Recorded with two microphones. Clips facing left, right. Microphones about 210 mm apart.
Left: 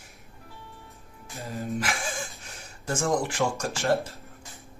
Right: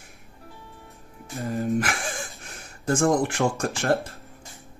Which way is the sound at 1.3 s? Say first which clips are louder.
Right 7 dB; 50° right (ahead or behind).